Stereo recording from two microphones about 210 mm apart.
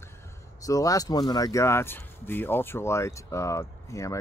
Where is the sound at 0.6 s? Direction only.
15° left (ahead or behind).